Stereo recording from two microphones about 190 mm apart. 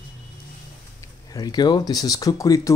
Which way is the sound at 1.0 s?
20° left (ahead or behind).